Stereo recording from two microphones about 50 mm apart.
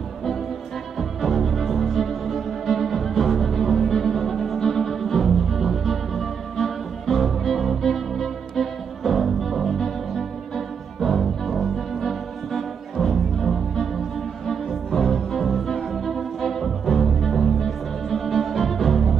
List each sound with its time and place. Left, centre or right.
0.9 s music: centre